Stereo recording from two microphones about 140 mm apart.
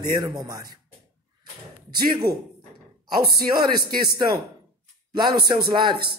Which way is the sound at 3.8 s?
90° right.